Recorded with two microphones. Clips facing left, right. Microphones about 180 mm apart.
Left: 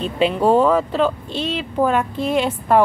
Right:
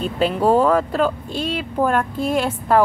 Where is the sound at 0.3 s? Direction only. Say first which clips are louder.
Even; 5° right (ahead or behind).